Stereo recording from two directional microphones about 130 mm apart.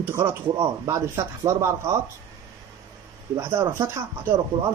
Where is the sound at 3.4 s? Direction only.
20° right (ahead or behind).